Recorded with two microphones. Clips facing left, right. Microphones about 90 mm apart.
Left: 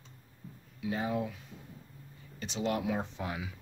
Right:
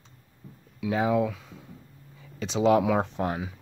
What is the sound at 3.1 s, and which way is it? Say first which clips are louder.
Speech: right 9 dB; 45° right (ahead or behind).